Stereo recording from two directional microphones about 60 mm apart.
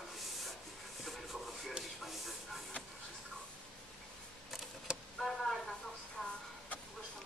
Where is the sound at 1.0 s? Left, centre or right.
Centre.